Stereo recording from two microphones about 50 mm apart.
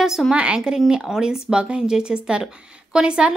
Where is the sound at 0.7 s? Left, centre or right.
Centre.